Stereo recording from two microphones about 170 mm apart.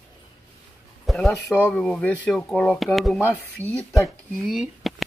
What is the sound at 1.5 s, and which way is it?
Speech, centre (ahead or behind).